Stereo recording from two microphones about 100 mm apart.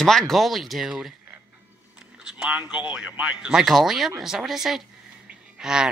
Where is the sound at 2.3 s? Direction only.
15° right (ahead or behind).